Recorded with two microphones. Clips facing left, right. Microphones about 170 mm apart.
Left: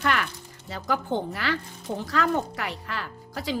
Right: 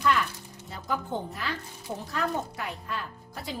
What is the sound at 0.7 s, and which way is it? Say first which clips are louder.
Speech: left 5 dB; 90° left.